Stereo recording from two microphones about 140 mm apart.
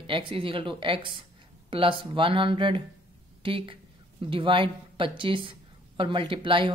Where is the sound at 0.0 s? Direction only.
40° right (ahead or behind).